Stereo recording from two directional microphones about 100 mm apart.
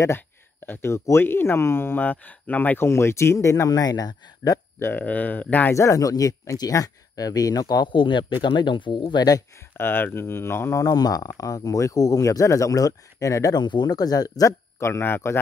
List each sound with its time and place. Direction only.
0.0 s speech: 20° left (ahead or behind); by 4.6 s 40° left (ahead or behind)
4.7 s speech: 20° left (ahead or behind)
5.8 s speech: 35° left (ahead or behind)
7.9 s speech: 55° left (ahead or behind)
9.8 s speech: 20° left (ahead or behind)
10.8 s speech: 40° left (ahead or behind); by 15.3 s 20° left (ahead or behind)